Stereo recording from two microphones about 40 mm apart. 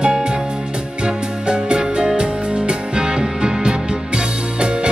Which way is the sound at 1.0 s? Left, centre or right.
Right.